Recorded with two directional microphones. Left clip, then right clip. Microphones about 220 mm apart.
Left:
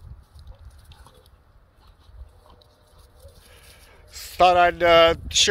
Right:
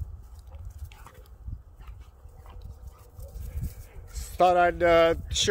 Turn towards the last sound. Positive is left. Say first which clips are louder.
# left 6 dB
turn(degrees=-5)  # may be behind; listen again after turning